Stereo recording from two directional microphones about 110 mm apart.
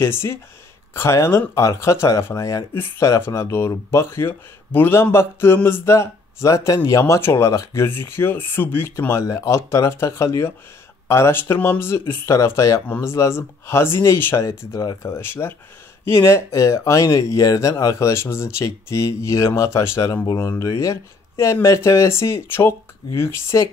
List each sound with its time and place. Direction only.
0.0 s speech: 25° left (ahead or behind)